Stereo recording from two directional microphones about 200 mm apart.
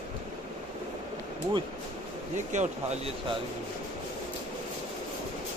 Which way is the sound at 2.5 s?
35° right (ahead or behind).